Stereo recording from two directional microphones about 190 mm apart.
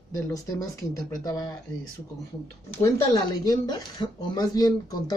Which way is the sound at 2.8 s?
20° left (ahead or behind).